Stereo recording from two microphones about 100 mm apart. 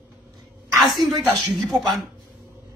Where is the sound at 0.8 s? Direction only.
Centre (ahead or behind).